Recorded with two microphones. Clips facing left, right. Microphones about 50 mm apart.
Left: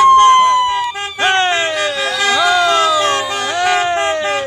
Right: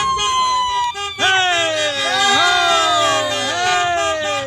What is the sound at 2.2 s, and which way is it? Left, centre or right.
Music, centre.